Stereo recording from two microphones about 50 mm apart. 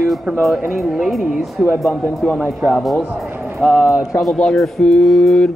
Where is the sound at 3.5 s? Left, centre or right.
Centre.